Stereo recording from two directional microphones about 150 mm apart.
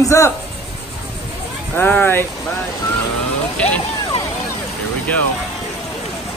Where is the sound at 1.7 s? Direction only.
15° left (ahead or behind).